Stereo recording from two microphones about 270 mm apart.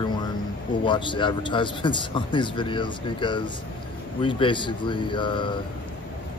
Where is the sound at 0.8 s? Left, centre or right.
Centre.